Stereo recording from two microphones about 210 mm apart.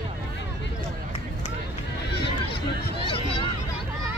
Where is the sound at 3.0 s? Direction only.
25° left (ahead or behind).